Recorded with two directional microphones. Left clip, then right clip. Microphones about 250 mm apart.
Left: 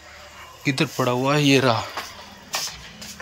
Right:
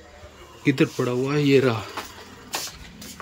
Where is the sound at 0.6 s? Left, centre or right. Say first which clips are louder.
Right 1 dB; centre.